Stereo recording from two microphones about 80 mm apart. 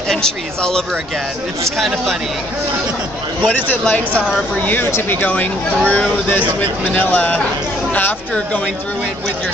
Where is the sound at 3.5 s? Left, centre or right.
Centre.